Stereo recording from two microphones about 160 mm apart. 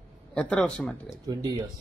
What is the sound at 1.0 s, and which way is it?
Speech, 25° right (ahead or behind).